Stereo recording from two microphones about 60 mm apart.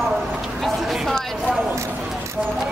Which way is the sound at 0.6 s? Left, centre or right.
Centre.